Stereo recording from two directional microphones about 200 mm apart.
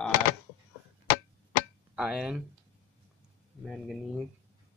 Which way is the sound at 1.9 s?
5° right (ahead or behind).